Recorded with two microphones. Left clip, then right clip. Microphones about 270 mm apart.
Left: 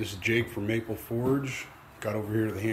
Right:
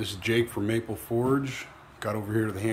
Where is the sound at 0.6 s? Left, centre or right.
Right.